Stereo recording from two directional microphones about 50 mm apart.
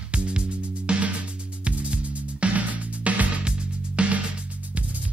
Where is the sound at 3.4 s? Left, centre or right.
Centre.